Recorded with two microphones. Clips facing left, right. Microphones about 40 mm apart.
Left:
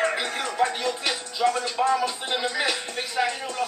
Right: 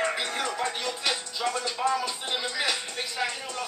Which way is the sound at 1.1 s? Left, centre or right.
Centre.